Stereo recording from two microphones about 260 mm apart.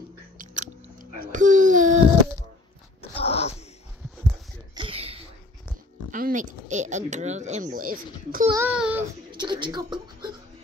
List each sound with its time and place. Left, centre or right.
0.9 s a sound: right
3.0 s dog: left
4.7 s a sound: right
6.1 s a child's voice: right
8.5 s child singing: centre
9.3 s speech: centre